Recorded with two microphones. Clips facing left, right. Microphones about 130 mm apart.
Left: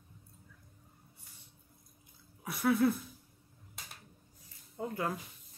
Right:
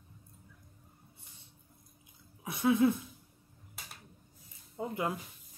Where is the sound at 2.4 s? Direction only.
20° right (ahead or behind).